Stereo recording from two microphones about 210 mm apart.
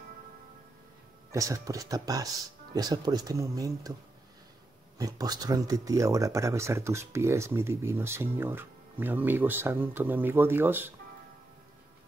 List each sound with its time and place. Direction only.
1.3 s speech: 15° right (ahead or behind)
4.9 s speech: 15° right (ahead or behind)